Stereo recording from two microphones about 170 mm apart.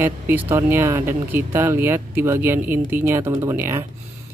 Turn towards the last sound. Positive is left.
turn(degrees=-15)  # may be behind; listen again after turning